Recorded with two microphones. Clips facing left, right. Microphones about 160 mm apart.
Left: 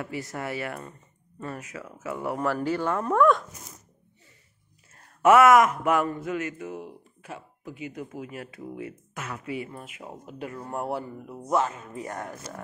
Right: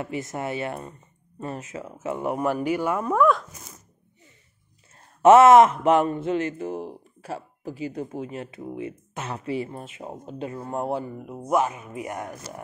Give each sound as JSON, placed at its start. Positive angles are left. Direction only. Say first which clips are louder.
{"t": 0.0, "sound": "speech", "louder": "right 3 dB", "side_deg": -20}
{"t": 4.9, "sound": "speech", "louder": "right 4 dB", "side_deg": -25}